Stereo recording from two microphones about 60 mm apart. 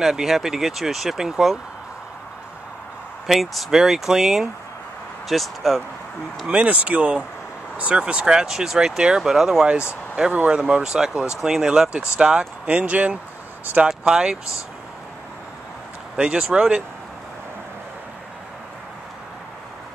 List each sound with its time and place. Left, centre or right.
0.0 s speech: centre
3.3 s speech: centre
6.4 s speech: right
13.8 s speech: centre
16.2 s speech: centre